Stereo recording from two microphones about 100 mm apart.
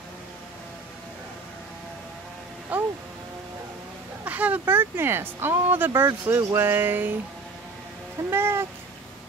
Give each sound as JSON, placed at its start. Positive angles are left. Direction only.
{"t": 2.7, "sound": "music", "side_deg": -15}
{"t": 4.2, "sound": "speech", "side_deg": -15}
{"t": 8.3, "sound": "speech", "side_deg": -25}